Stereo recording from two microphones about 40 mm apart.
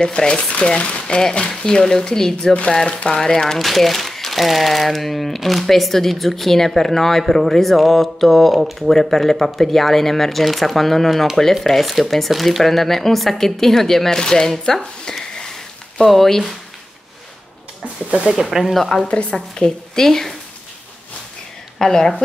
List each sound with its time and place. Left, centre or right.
0.0 s speech: centre
3.5 s speech: centre
14.7 s a sound: centre
16.1 s speech: centre
18.3 s speech: centre
18.7 s speech: centre
19.3 s speech: centre
21.7 s a woman's voice: centre